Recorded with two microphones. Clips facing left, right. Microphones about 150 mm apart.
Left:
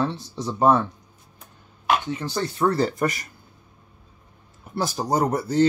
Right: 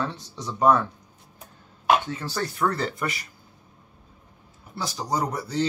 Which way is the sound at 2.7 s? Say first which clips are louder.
Left 6 dB; 40° left (ahead or behind).